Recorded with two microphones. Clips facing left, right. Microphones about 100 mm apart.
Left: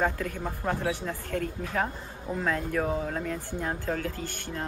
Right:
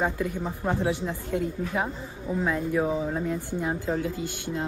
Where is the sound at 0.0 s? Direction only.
15° right (ahead or behind).